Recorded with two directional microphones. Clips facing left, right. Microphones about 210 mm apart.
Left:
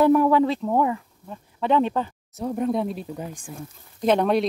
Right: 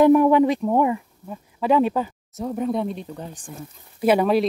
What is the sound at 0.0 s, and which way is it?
Speech, 15° right (ahead or behind).